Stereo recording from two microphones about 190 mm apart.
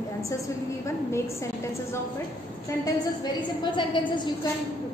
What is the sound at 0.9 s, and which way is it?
Speech, 15° left (ahead or behind).